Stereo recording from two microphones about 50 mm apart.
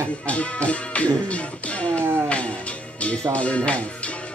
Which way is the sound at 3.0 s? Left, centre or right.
Left.